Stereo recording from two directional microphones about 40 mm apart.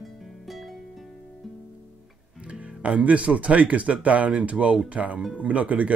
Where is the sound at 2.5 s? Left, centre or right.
Right.